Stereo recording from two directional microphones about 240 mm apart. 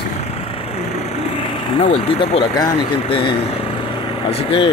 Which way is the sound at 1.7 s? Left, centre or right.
Left.